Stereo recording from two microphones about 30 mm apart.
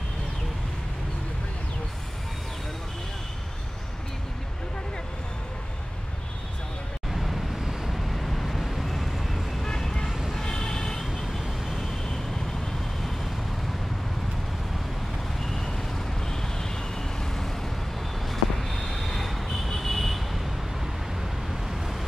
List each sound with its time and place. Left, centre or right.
7.1 s vehicle: centre
10.4 s vehicle: left
15.4 s vehicle: centre
18.3 s vehicle: centre